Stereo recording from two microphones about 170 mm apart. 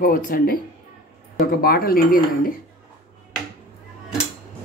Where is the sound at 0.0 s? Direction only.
55° left (ahead or behind).